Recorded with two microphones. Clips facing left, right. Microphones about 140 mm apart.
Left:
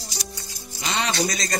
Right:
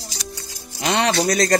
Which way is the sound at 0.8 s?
65° right (ahead or behind).